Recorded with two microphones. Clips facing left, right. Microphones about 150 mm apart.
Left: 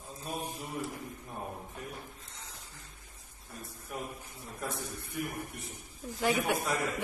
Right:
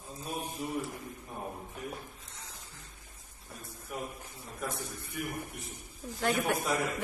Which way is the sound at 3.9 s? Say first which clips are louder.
Right 1 dB; 5° right (ahead or behind).